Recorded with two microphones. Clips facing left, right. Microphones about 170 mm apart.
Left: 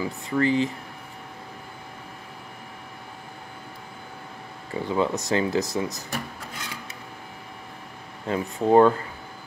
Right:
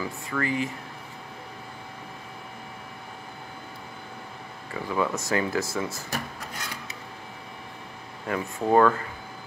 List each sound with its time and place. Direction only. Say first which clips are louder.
0.0 s speech: left 6 dB; 30° left (ahead or behind)
4.7 s speech: left 3 dB; 25° left (ahead or behind)
8.3 s speech: left 3 dB; 20° left (ahead or behind)